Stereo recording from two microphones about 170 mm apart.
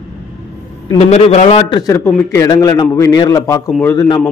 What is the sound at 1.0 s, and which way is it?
Speech, 40° left (ahead or behind).